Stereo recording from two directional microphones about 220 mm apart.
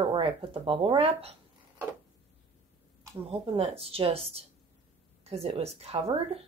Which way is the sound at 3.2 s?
25° right (ahead or behind).